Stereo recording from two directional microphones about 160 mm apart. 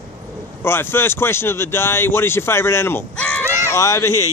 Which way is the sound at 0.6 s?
15° left (ahead or behind).